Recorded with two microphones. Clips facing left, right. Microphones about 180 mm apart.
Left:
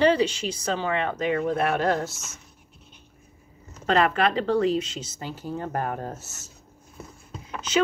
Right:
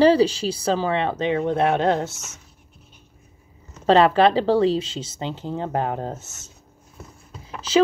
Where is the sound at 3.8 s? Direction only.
30° right (ahead or behind).